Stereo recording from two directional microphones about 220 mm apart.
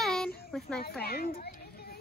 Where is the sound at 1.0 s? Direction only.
45° left (ahead or behind).